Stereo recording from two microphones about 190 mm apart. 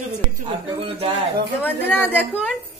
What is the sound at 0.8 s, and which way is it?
Speech, 30° right (ahead or behind).